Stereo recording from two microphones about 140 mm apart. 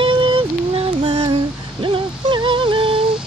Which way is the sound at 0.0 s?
35° right (ahead or behind).